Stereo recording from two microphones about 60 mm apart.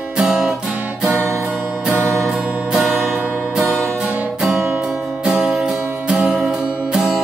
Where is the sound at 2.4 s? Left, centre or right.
Right.